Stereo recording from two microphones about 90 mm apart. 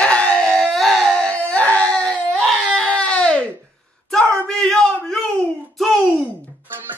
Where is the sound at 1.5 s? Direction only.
15° left (ahead or behind).